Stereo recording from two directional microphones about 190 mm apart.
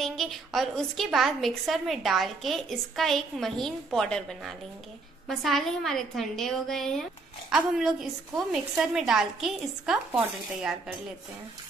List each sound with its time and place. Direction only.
0.0 s a woman's voice: centre (ahead or behind)